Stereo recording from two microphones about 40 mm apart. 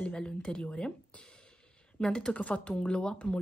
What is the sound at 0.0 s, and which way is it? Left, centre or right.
Speech, left.